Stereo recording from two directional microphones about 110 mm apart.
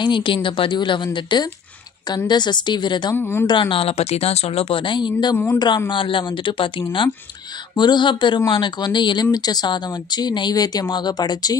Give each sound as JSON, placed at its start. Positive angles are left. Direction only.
{"t": 0.0, "sound": "a woman's voice", "side_deg": 45}
{"t": 3.2, "sound": "speech", "side_deg": 20}
{"t": 3.4, "sound": "a woman's voice", "side_deg": 50}
{"t": 7.7, "sound": "a woman's voice", "side_deg": 45}